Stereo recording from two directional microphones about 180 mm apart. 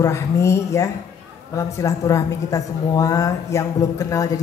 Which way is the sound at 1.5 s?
20° left (ahead or behind).